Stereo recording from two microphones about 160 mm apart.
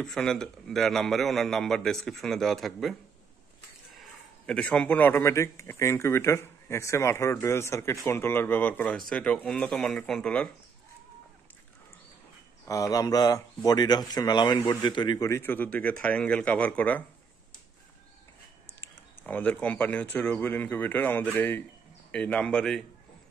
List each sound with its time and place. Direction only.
0.0 s a man's voice: 5° left (ahead or behind)
12.6 s speech: 20° left (ahead or behind)
18.8 s a man's voice: 10° left (ahead or behind)